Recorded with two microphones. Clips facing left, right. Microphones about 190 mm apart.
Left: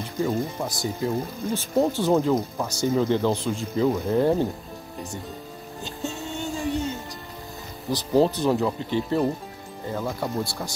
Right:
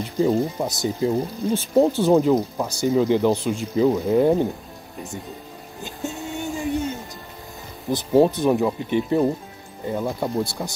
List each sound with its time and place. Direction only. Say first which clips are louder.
0.6 s speech: right 4 dB; 15° right (ahead or behind)
6.3 s a sound: right 2 dB; 20° right (ahead or behind)
6.6 s music: right 2 dB; centre (ahead or behind)
7.9 s speech: right 3 dB; 20° right (ahead or behind)